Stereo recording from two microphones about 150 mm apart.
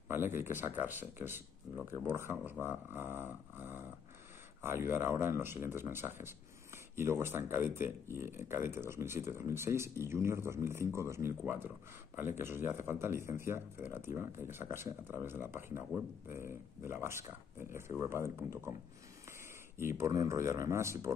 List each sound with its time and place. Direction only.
0.1 s speech: 15° right (ahead or behind)
19.8 s speech: 15° right (ahead or behind)